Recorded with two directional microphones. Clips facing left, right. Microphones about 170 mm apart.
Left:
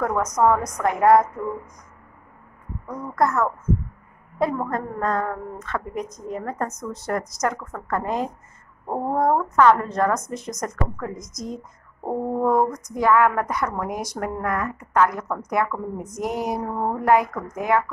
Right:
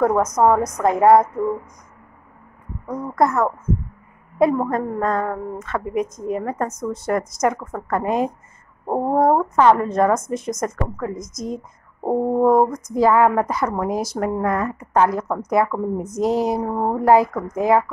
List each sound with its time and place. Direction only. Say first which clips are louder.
0.0 s speech: right 4 dB; 25° right (ahead or behind)
3.2 s speech: right 3 dB; 25° right (ahead or behind)